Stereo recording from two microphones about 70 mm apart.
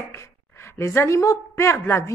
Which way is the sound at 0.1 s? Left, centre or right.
Left.